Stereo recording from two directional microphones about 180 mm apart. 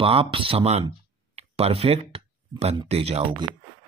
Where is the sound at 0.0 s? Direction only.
30° right (ahead or behind).